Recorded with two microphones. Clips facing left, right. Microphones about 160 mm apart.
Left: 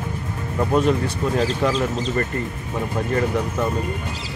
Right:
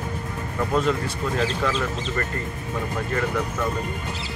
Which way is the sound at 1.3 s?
35° left (ahead or behind).